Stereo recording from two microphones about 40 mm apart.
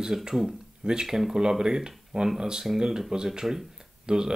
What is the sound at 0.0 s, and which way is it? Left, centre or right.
Speech, centre.